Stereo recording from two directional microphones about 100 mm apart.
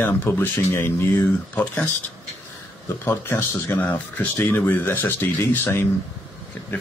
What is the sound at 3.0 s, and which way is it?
Speech, 20° left (ahead or behind).